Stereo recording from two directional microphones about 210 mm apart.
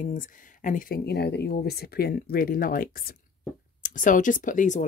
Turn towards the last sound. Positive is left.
turn(degrees=35)  # may be behind; listen again after turning